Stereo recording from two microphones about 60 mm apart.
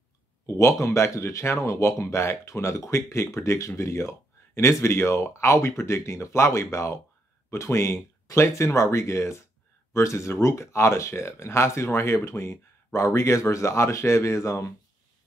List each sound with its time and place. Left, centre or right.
0.6 s speech: left
1.6 s speech: left